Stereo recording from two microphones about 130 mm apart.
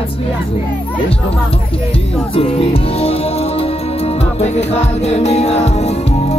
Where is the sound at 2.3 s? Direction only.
50° left (ahead or behind).